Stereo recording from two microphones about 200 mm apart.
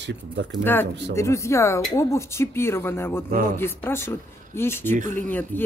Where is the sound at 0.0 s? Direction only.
60° right (ahead or behind).